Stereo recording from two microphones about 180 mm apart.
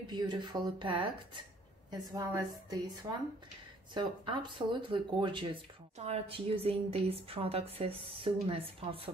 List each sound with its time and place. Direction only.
0.1 s speech: 25° right (ahead or behind)